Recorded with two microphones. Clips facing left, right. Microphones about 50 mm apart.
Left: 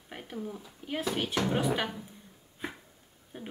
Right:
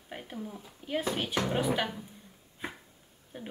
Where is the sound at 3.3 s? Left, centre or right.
Centre.